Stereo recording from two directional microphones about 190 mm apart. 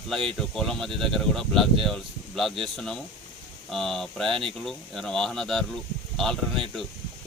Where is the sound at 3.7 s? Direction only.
Centre (ahead or behind).